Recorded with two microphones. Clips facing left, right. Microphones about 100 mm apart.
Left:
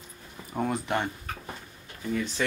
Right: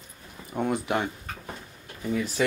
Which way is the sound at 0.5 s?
Centre (ahead or behind).